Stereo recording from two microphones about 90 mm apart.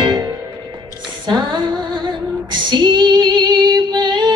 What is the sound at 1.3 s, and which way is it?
Music, 60° right (ahead or behind).